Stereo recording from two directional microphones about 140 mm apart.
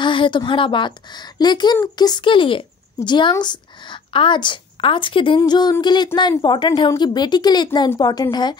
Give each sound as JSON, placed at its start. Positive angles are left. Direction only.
{"t": 0.0, "sound": "a woman's voice", "side_deg": 35}